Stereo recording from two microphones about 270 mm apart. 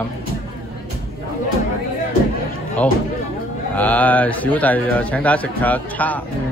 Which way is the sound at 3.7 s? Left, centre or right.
Centre.